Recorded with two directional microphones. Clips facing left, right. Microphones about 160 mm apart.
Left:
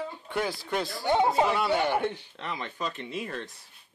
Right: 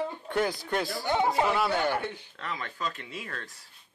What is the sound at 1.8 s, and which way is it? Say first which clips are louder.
Speech: left 2 dB; 20° left (ahead or behind).